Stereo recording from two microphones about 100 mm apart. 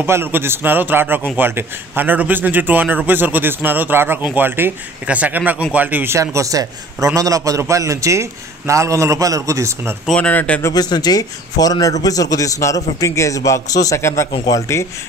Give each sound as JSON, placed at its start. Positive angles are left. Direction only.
{"t": 0.0, "sound": "a man's voice", "side_deg": -25}
{"t": 6.3, "sound": "a man's voice", "side_deg": -35}
{"t": 10.1, "sound": "speech", "side_deg": 10}
{"t": 10.7, "sound": "a man's voice", "side_deg": 40}